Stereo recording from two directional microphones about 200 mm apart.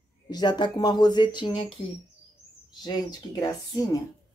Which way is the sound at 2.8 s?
20° left (ahead or behind).